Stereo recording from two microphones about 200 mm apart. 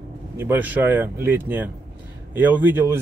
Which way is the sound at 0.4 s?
10° right (ahead or behind).